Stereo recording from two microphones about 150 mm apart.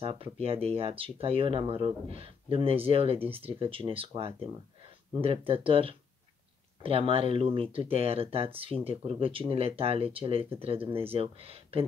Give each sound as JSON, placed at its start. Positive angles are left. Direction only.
{"t": 0.0, "sound": "speech", "side_deg": -40}